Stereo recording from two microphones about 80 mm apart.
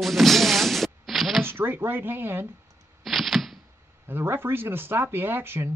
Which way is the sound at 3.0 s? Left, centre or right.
Centre.